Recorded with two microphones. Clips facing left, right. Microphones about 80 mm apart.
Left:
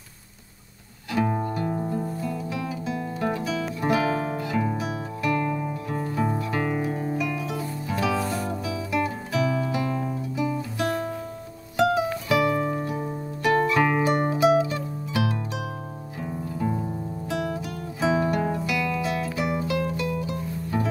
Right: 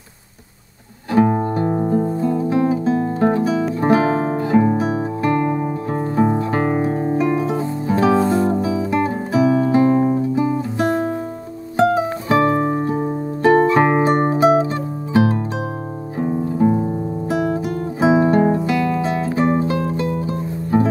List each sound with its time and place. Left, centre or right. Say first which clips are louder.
1.1 s music: right 9 dB; right
17.6 s guitar: right 9 dB; right